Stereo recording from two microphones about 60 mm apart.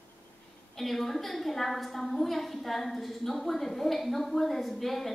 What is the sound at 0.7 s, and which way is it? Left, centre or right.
A woman's voice, centre.